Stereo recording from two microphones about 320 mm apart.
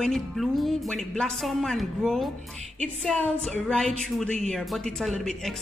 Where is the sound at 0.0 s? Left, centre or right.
Centre.